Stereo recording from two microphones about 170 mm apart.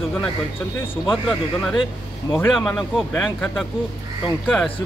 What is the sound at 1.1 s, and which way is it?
Speech, centre (ahead or behind).